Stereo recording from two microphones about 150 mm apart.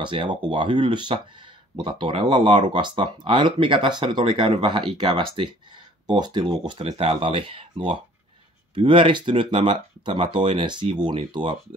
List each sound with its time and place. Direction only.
0.0 s speech: 35° right (ahead or behind)